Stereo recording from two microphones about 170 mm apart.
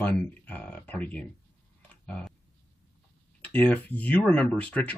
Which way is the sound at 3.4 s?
10° left (ahead or behind).